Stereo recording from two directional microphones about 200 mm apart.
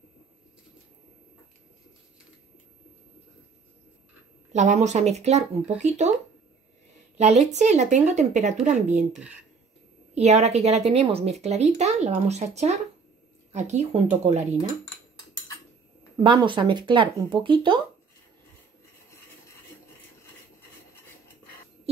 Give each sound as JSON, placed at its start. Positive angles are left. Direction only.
{"t": 4.5, "sound": "a woman's voice", "side_deg": -35}
{"t": 7.2, "sound": "a woman's voice", "side_deg": -35}
{"t": 9.1, "sound": "speech", "side_deg": -5}
{"t": 10.1, "sound": "a woman's voice", "side_deg": -35}
{"t": 16.2, "sound": "speech", "side_deg": -25}